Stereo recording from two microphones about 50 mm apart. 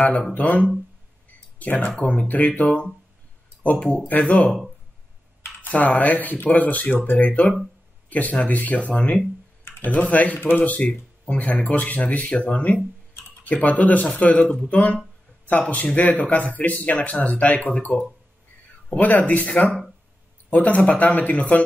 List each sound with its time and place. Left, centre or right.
0.3 s speech: left
4.1 s speech: left
5.7 s speech: left
9.7 s speech: left